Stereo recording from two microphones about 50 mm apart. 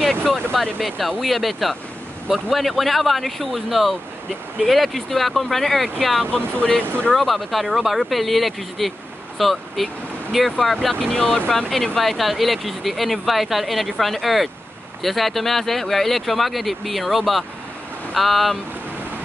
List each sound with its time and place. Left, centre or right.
0.1 s speech: centre
6.3 s speech: left
7.2 s speech: centre
11.1 s speech: centre
11.5 s speech: centre